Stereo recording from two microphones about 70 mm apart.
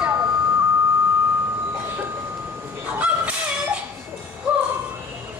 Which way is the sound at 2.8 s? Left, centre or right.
Centre.